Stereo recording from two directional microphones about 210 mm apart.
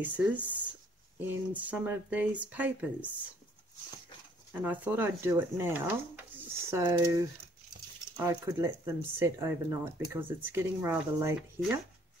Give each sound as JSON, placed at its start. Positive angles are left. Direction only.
{"t": 0.0, "sound": "speech", "side_deg": -5}
{"t": 4.6, "sound": "speech", "side_deg": -10}
{"t": 8.2, "sound": "speech", "side_deg": -10}